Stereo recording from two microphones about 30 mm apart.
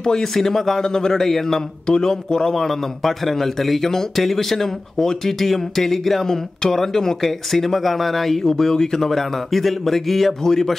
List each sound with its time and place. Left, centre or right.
0.0 s speech: centre
1.2 s speech: centre
1.9 s speech: left
2.5 s speech: centre
8.5 s speech: centre
10.5 s speech: centre